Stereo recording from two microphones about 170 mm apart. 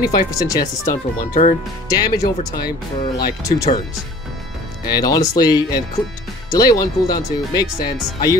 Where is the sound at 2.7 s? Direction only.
70° left (ahead or behind).